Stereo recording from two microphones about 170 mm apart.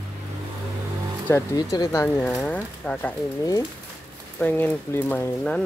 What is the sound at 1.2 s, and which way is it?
Speech, 15° left (ahead or behind).